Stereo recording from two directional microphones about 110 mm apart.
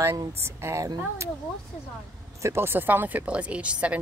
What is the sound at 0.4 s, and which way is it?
Speech, 25° right (ahead or behind).